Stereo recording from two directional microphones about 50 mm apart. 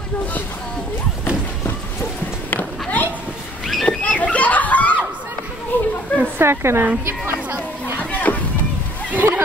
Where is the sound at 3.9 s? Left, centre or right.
Left.